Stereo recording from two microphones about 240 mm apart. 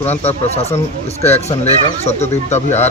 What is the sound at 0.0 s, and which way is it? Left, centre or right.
Speech, left.